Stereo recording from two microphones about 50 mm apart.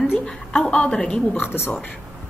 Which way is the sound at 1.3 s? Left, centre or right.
Left.